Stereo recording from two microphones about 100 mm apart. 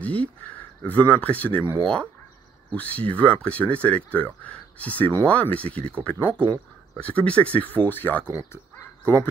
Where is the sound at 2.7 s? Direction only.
15° left (ahead or behind).